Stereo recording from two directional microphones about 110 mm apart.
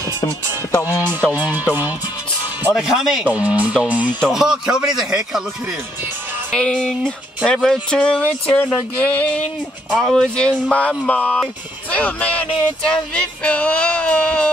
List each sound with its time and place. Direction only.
0.7 s speech: 25° left (ahead or behind)
1.3 s speech: 15° right (ahead or behind)
2.7 s speech: 5° right (ahead or behind)
3.3 s speech: 15° right (ahead or behind)
6.5 s music: 5° left (ahead or behind)
9.8 s speech: 5° left (ahead or behind)
10.7 s music: 10° left (ahead or behind)